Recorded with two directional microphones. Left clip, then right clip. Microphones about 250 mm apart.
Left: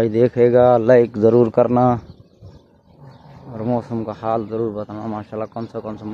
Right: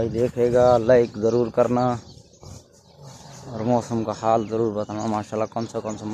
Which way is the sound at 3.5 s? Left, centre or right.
Centre.